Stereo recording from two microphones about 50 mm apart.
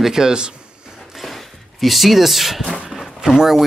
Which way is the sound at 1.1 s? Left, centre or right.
Centre.